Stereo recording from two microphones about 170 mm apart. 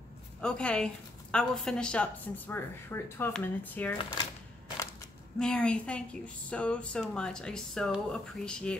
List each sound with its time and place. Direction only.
0.4 s a woman's voice: 5° left (ahead or behind)
4.0 s speech: 25° left (ahead or behind)
5.4 s a woman's voice: 5° left (ahead or behind)